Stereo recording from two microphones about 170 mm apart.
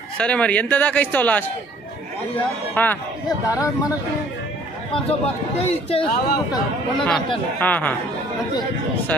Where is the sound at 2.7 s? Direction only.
10° left (ahead or behind).